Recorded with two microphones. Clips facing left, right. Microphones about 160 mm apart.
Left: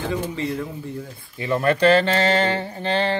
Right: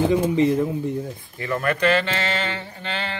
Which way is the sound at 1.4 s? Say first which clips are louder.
Left 4 dB; 25° left (ahead or behind).